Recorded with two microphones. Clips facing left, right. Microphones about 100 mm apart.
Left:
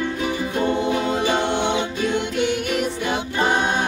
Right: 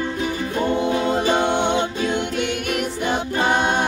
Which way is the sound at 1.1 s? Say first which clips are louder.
Right 2 dB; 45° right (ahead or behind).